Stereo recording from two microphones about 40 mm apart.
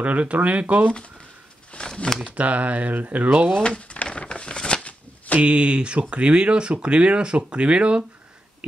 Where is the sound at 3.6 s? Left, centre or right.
Left.